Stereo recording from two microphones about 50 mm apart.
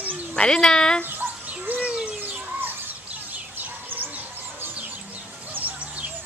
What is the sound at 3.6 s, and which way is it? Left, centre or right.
Chicken, right.